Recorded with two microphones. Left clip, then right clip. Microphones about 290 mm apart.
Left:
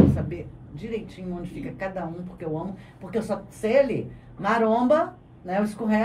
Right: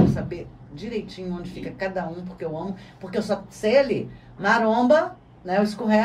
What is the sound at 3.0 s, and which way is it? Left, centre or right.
Speech, right.